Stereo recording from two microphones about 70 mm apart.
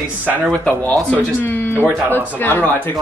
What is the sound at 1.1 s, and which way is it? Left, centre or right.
Speech, left.